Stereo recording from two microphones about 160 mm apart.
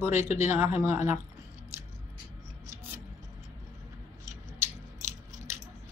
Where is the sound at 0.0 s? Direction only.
15° right (ahead or behind).